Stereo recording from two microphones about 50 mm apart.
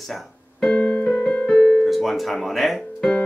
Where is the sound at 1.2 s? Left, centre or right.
Centre.